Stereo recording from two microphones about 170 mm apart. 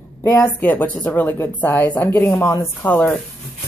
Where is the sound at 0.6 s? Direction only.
10° left (ahead or behind).